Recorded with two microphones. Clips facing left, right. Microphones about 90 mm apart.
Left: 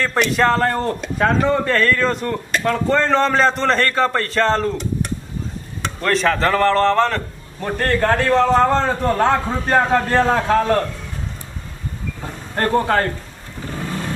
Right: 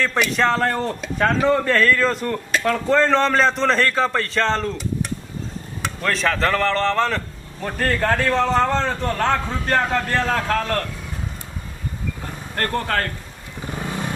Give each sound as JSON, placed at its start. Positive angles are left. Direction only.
{"t": 0.0, "sound": "a man's voice", "side_deg": 0}
{"t": 12.2, "sound": "vehicle", "side_deg": 15}
{"t": 13.7, "sound": "vehicle", "side_deg": -15}